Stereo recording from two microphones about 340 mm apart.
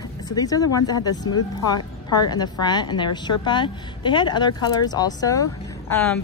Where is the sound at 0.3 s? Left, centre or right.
Centre.